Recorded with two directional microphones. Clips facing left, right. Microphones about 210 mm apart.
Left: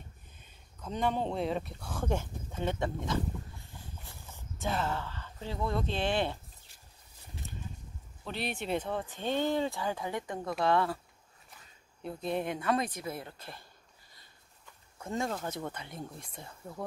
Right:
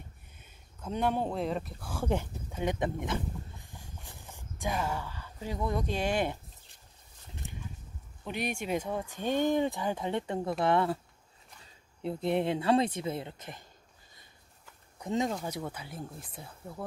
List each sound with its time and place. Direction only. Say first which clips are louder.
0.7 s speech: right 1 dB; 10° right (ahead or behind)
2.0 s speech: right 2 dB; 15° right (ahead or behind)
3.5 s a sound: even; 15° right (ahead or behind)
7.4 s a sound: right 1 dB; 15° right (ahead or behind)
8.2 s speech: right 2 dB; 15° right (ahead or behind)
15.0 s speech: right 3 dB; 15° right (ahead or behind)